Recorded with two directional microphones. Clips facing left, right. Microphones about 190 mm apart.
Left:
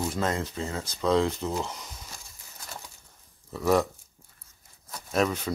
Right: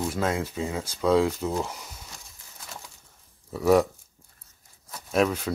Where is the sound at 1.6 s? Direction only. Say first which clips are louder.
Right 2 dB; 10° right (ahead or behind).